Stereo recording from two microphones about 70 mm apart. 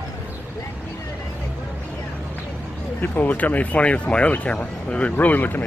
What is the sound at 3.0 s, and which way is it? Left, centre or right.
Speech, left.